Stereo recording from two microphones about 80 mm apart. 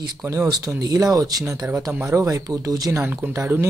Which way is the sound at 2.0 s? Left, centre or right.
Right.